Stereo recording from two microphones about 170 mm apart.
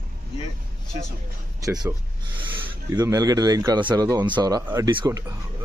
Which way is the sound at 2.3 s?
25° right (ahead or behind).